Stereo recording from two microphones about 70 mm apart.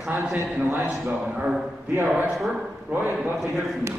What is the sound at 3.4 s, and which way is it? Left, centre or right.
Speech, centre.